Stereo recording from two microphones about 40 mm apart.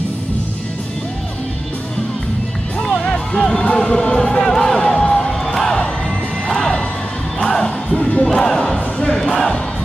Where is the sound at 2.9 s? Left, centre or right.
Left.